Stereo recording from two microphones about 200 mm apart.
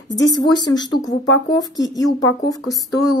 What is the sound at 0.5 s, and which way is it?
Speech, 20° left (ahead or behind).